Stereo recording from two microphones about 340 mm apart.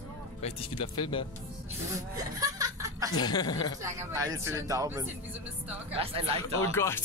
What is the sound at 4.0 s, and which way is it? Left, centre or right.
Speech, centre.